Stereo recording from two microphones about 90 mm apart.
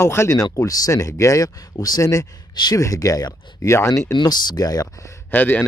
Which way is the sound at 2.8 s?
40° left (ahead or behind).